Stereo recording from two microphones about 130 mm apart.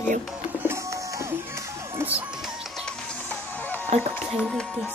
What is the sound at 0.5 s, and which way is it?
Music, 15° right (ahead or behind).